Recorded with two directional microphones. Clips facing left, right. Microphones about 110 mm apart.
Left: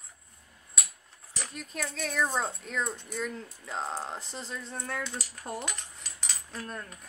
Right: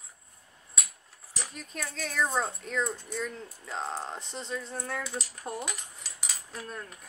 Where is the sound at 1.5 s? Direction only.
Centre (ahead or behind).